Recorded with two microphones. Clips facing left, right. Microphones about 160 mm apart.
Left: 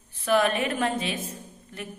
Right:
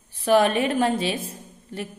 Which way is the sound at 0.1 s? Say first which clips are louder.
Right 4 dB; 35° right (ahead or behind).